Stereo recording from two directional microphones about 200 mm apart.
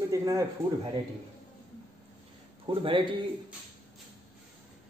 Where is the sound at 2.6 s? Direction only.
25° right (ahead or behind).